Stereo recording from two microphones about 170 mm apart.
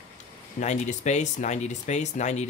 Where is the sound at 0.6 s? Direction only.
45° left (ahead or behind).